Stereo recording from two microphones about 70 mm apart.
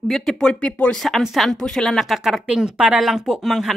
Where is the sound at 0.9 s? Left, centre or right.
Centre.